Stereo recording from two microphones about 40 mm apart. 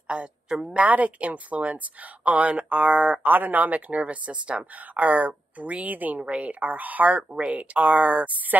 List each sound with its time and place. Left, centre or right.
0.1 s speech: right
0.5 s a woman's voice: centre
0.7 s speech: right
3.3 s speech: right
6.2 s speech: right
6.6 s speech: right
7.3 s speech: right